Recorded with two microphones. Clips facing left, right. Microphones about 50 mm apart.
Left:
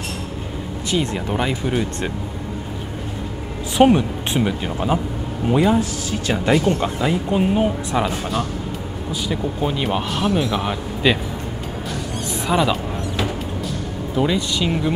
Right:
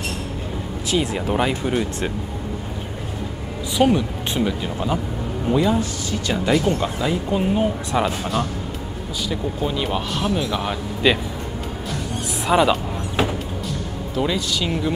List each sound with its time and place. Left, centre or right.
0.8 s speech: centre
3.7 s speech: left
7.9 s speech: centre
9.3 s speech: centre
12.4 s speech: centre
13.2 s music: right
14.2 s speech: centre